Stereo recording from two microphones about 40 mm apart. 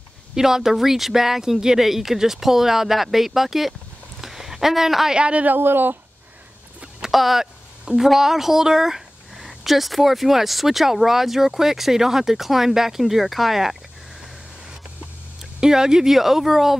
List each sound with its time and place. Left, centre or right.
0.4 s speech: centre
4.2 s a sound: centre
5.1 s speech: right
5.6 s speech: right
7.1 s speech: centre
15.6 s speech: centre